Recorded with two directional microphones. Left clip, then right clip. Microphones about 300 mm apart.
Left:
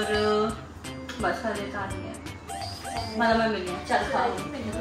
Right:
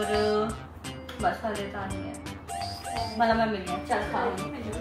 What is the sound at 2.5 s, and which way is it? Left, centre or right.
Music, centre.